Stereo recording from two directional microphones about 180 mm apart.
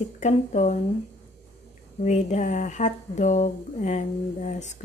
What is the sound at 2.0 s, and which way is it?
Speech, 40° left (ahead or behind).